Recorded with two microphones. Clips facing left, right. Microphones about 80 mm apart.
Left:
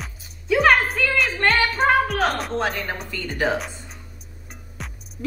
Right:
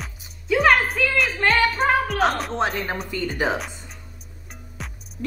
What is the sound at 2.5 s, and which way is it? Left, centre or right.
Speech, right.